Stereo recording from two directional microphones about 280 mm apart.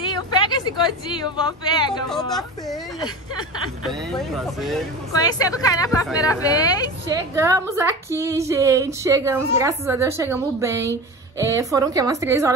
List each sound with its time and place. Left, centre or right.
0.0 s speech: centre
2.0 s speech: centre
2.7 s speech: centre
5.2 s speech: centre
7.1 s a woman's voice: centre